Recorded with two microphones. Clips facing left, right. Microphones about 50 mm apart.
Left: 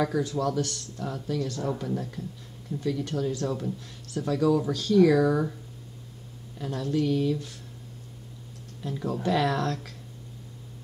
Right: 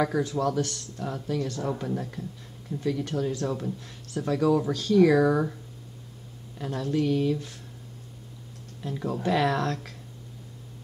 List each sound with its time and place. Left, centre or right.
0.0 s speech: right
6.6 s speech: centre
8.8 s speech: centre